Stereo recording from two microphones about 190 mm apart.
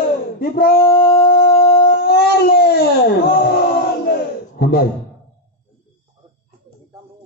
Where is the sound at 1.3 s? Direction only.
55° left (ahead or behind).